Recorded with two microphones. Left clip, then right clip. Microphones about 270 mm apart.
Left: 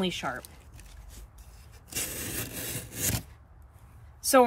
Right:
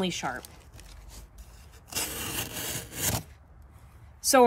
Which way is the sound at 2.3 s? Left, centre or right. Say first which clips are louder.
Right 3 dB; right.